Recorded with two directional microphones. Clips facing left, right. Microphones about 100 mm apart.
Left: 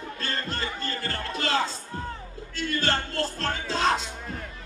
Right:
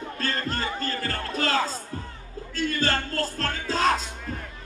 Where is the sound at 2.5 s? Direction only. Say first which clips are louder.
Right 1 dB; 40° right (ahead or behind).